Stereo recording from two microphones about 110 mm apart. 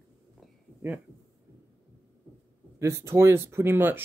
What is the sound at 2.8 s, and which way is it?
Speech, 25° right (ahead or behind).